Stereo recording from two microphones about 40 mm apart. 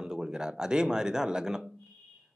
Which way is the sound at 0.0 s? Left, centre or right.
Centre.